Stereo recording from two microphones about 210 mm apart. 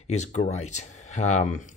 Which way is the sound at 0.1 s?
35° left (ahead or behind).